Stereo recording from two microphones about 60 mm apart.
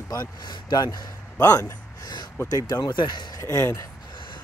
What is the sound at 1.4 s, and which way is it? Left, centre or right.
Speech, left.